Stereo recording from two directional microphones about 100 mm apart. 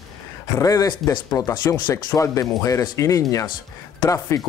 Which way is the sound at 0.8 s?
45° left (ahead or behind).